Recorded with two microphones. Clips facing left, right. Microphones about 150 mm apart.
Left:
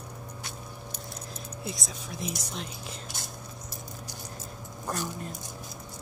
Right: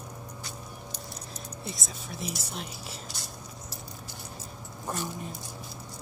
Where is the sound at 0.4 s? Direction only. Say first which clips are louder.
Even; 55° left (ahead or behind).